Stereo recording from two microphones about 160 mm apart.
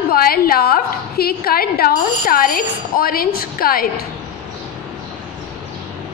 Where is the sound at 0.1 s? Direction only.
70° left (ahead or behind).